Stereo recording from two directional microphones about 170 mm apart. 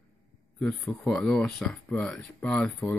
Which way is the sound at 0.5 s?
5° left (ahead or behind).